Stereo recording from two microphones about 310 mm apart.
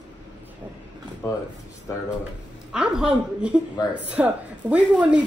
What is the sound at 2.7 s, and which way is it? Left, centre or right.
Speech, centre.